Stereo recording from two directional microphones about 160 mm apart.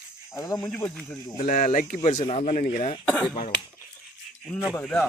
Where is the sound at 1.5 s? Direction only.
55° left (ahead or behind).